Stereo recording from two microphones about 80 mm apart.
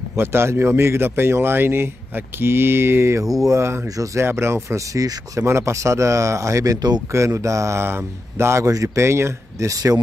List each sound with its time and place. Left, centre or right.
0.1 s speech: right
3.3 s speech: right
4.6 s speech: right
7.1 s speech: right